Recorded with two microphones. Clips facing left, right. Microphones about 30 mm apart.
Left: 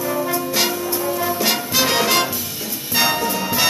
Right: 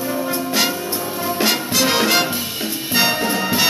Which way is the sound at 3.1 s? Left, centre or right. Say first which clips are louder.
Right 1 dB; right.